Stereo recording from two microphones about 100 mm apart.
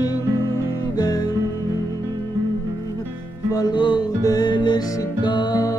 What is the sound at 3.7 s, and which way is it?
Music, 55° left (ahead or behind).